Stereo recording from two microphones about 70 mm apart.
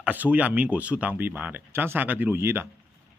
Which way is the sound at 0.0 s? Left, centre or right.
Right.